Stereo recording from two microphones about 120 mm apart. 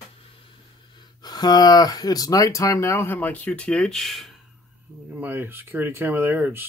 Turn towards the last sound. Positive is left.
turn(degrees=-20)  # may be behind; listen again after turning